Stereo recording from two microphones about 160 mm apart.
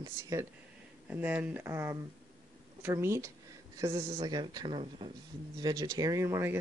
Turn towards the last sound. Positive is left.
turn(degrees=-15)  # may be behind; listen again after turning